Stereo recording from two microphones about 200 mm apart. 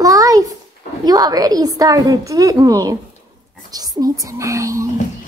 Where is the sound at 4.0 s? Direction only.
15° right (ahead or behind).